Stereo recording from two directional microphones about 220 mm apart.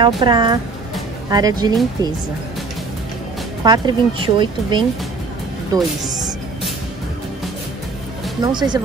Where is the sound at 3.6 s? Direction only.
20° right (ahead or behind).